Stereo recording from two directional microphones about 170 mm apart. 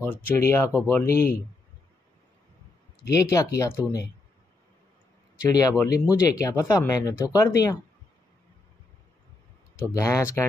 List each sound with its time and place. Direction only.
0.3 s speech: 15° left (ahead or behind)
3.1 s speech: 20° left (ahead or behind)
5.5 s speech: 20° left (ahead or behind)
9.9 s speech: 20° left (ahead or behind)